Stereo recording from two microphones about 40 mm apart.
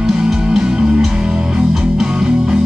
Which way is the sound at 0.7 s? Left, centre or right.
Right.